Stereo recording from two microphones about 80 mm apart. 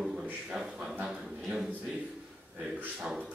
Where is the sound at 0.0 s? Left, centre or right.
Centre.